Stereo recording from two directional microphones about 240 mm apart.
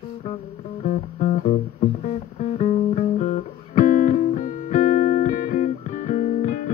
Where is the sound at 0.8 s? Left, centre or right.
Left.